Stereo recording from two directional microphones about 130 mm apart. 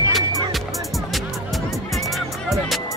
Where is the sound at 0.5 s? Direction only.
Centre (ahead or behind).